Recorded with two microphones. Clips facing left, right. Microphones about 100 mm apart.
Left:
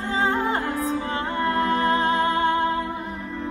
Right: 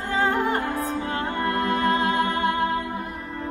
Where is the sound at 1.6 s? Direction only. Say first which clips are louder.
Left 1 dB; 30° left (ahead or behind).